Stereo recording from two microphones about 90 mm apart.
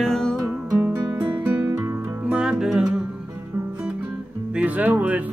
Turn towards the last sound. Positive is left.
turn(degrees=-20)  # may be behind; listen again after turning